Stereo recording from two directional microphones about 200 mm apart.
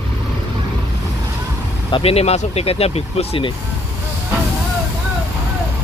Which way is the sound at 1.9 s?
30° left (ahead or behind).